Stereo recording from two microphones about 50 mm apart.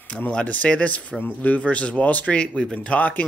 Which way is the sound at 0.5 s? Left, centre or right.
Left.